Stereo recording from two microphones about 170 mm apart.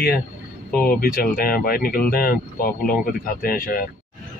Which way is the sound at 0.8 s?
60° left (ahead or behind).